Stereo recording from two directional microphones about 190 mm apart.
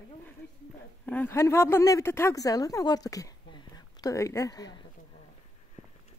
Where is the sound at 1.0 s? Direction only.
10° left (ahead or behind).